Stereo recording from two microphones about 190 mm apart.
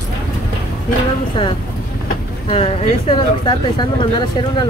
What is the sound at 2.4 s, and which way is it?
Speech, 30° left (ahead or behind).